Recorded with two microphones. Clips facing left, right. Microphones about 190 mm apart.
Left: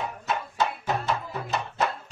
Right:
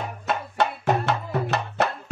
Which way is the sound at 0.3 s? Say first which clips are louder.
Right 3 dB; 70° right (ahead or behind).